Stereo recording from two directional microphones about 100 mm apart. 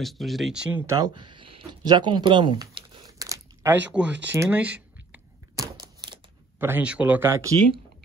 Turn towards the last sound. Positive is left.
turn(degrees=-25)  # may be behind; listen again after turning